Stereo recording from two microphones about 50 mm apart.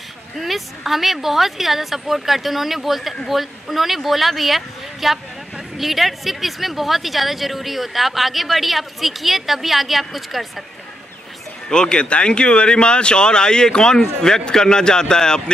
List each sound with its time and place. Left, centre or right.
0.4 s speech: centre
11.7 s speech: centre